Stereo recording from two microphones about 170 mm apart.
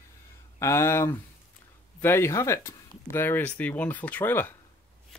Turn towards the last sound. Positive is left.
turn(degrees=10)  # may be behind; listen again after turning